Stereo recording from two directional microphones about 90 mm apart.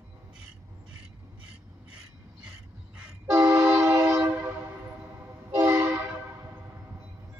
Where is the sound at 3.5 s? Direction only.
30° right (ahead or behind).